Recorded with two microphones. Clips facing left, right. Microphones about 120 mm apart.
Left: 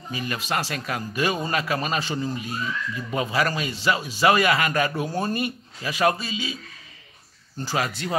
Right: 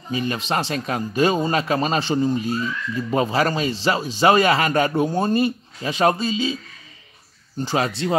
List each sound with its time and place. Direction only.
0.1 s a man's voice: 25° right (ahead or behind)